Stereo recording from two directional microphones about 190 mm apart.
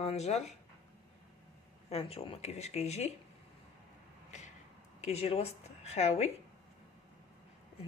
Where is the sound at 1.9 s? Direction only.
30° left (ahead or behind).